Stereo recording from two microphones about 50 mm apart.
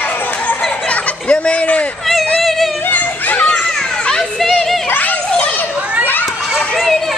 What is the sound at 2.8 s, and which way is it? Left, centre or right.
Children playing, left.